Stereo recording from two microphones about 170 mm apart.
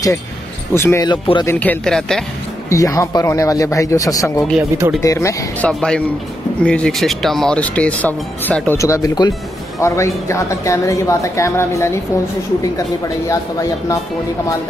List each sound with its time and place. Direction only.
0.7 s speech: 15° left (ahead or behind)
1.1 s speech: 30° left (ahead or behind)
1.4 s speech: 10° left (ahead or behind)
2.7 s speech: 20° left (ahead or behind)
4.6 s speech: 15° right (ahead or behind)
5.0 s speech: 20° left (ahead or behind)
5.7 s a man's voice: 5° left (ahead or behind)
13.3 s speech: 20° left (ahead or behind)